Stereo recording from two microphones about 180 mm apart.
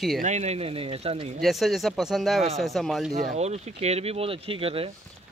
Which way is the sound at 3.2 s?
35° right (ahead or behind).